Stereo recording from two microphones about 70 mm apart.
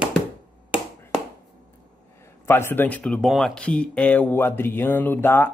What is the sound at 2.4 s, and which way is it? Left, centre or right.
Speech, left.